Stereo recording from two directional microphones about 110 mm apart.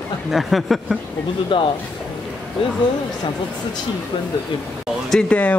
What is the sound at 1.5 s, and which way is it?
Speech, 50° left (ahead or behind).